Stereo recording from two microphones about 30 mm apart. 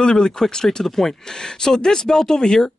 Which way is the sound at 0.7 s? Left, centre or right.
Centre.